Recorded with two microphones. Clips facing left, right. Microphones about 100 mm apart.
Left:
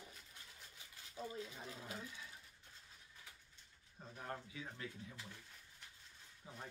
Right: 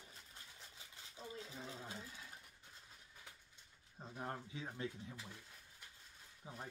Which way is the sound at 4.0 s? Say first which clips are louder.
Right 2 dB; 30° right (ahead or behind).